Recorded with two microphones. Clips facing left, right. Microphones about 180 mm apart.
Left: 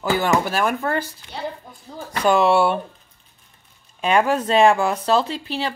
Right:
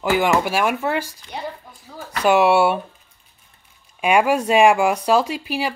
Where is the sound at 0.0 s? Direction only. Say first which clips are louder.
Right 2 dB; 15° right (ahead or behind).